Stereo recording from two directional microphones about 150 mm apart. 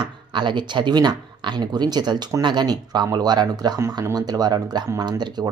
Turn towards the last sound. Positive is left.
turn(degrees=-30)  # may be behind; listen again after turning